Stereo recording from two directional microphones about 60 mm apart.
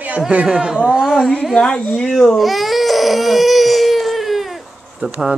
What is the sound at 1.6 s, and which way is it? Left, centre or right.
Speech, centre.